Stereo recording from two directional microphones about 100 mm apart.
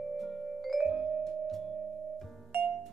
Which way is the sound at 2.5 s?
15° right (ahead or behind).